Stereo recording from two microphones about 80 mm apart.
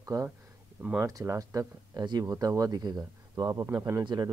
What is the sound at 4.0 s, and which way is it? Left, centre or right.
Speech, right.